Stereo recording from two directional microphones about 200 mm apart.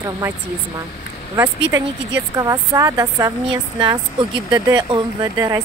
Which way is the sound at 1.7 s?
15° right (ahead or behind).